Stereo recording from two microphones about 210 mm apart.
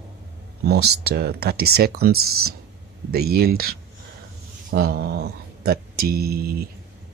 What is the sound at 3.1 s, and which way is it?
Speech, 45° right (ahead or behind).